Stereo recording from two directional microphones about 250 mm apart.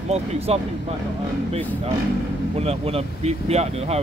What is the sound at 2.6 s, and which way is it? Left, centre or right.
Speech, right.